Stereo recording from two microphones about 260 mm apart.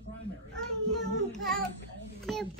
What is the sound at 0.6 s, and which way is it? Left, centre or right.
Child singing, centre.